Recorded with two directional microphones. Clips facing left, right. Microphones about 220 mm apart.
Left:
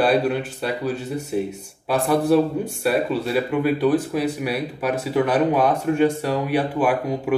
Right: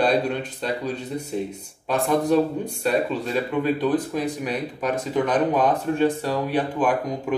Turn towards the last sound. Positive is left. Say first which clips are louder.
# left 3 dB
turn(degrees=10)  # may be behind; listen again after turning